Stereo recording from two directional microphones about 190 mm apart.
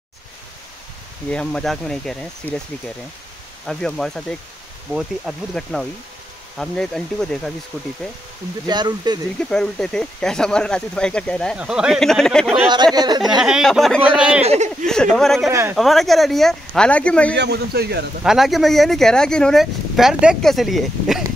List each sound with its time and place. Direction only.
1.3 s speech: 5° left (ahead or behind)
3.6 s speech: centre (ahead or behind)
8.6 s speech: 20° right (ahead or behind)
9.4 s speech: 5° left (ahead or behind)
12.5 s speech: 25° right (ahead or behind)
13.4 s speech: centre (ahead or behind)
14.4 s speech: 35° right (ahead or behind)
14.9 s speech: 5° left (ahead or behind)
17.4 s speech: 60° right (ahead or behind)
18.2 s speech: centre (ahead or behind)